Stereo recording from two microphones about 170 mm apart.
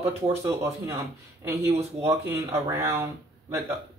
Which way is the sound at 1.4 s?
15° right (ahead or behind).